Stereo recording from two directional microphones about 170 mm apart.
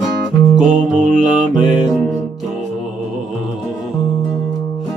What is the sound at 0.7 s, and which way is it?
Music, 45° right (ahead or behind).